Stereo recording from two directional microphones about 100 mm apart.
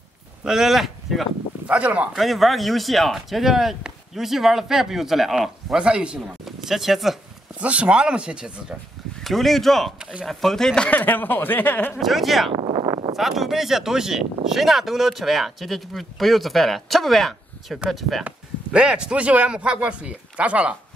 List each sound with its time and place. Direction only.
0.4 s speech: 5° right (ahead or behind)
1.7 s speech: 15° right (ahead or behind)
2.1 s speech: centre (ahead or behind); by 12.0 s 20° left (ahead or behind)
12.0 s speech: centre (ahead or behind)